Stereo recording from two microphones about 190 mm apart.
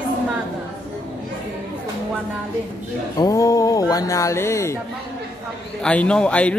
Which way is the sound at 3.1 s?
20° left (ahead or behind).